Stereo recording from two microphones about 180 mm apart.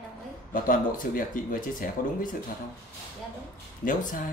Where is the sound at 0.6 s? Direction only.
50° left (ahead or behind).